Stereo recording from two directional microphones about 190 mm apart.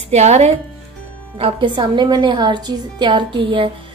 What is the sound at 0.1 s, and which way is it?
A woman's voice, 35° right (ahead or behind).